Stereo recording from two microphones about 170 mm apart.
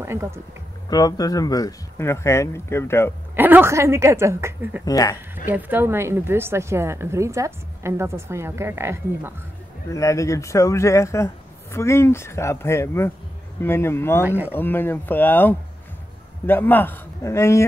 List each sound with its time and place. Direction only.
0.0 s speech: 15° right (ahead or behind)
0.8 s speech: 20° left (ahead or behind)
3.3 s speech: 10° right (ahead or behind)
4.8 s speech: 20° left (ahead or behind)
5.3 s speech: 10° right (ahead or behind)
9.8 s speech: 20° left (ahead or behind)
14.2 s speech: 10° right (ahead or behind)
14.5 s speech: 10° left (ahead or behind)